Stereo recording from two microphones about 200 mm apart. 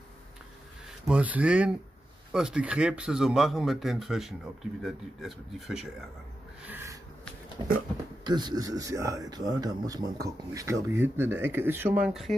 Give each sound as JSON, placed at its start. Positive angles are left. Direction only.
{"t": 1.0, "sound": "speech", "side_deg": -5}
{"t": 6.7, "sound": "a sound", "side_deg": -10}
{"t": 8.2, "sound": "speech", "side_deg": -20}